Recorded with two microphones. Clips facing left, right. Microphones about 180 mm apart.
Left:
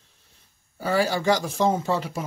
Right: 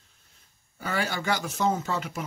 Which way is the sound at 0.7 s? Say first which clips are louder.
Left 7 dB; 35° left (ahead or behind).